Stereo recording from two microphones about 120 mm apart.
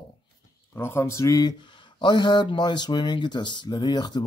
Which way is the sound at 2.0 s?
40° left (ahead or behind).